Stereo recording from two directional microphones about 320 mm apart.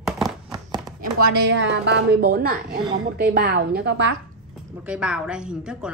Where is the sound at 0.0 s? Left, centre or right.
Centre.